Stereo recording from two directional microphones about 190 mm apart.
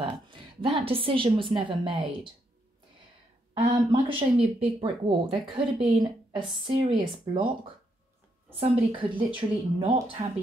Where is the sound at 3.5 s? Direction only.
25° right (ahead or behind).